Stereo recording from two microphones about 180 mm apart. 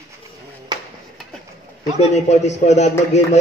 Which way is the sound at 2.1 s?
40° left (ahead or behind).